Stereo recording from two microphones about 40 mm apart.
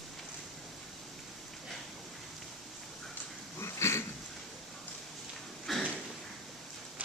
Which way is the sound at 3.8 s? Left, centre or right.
Left.